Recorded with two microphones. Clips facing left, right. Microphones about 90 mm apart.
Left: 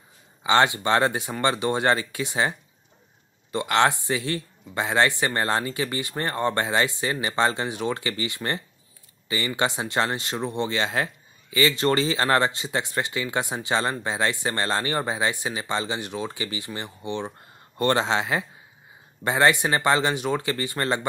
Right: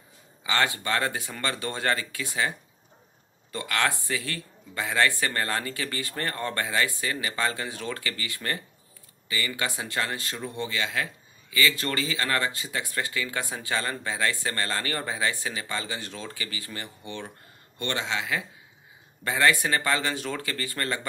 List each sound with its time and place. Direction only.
0.4 s speech: 30° left (ahead or behind)
3.5 s speech: 25° left (ahead or behind)
17.7 s speech: 35° left (ahead or behind)